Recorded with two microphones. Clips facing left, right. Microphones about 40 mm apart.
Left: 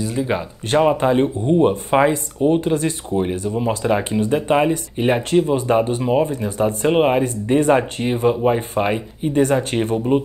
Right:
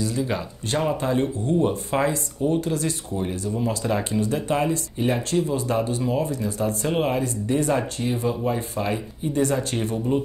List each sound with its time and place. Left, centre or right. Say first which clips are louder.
0.0 s speech: left 4 dB; left